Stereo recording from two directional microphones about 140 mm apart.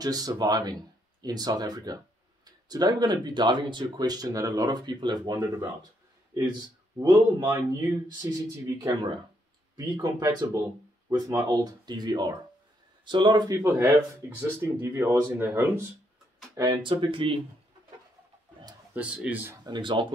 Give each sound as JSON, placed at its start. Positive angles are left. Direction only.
{"t": 0.0, "sound": "speech", "side_deg": -25}
{"t": 7.0, "sound": "speech", "side_deg": -25}
{"t": 13.6, "sound": "speech", "side_deg": -15}
{"t": 16.5, "sound": "speech", "side_deg": -30}
{"t": 18.9, "sound": "speech", "side_deg": -10}
{"t": 19.6, "sound": "speech", "side_deg": -35}